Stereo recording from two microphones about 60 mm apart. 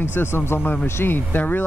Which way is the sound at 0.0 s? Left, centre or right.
Left.